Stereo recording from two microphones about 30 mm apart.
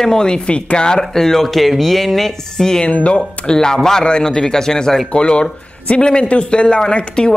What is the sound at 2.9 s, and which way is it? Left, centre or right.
Speech, left.